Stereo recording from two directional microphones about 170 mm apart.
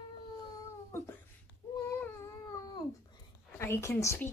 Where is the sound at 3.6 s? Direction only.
15° left (ahead or behind).